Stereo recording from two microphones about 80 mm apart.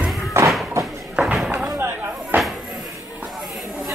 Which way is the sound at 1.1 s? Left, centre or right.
Centre.